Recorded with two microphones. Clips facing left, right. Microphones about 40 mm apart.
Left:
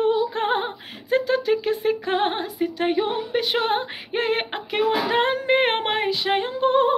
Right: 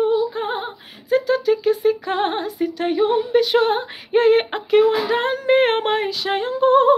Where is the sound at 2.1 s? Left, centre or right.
Centre.